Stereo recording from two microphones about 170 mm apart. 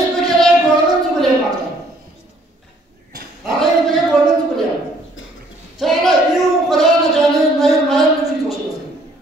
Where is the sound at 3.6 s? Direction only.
Centre (ahead or behind).